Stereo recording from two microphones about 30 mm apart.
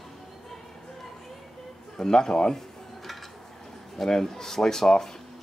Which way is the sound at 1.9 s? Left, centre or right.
Left.